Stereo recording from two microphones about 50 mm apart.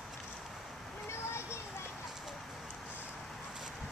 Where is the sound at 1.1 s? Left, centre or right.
Left.